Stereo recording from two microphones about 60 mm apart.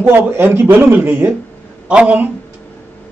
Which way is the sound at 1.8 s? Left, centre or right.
Centre.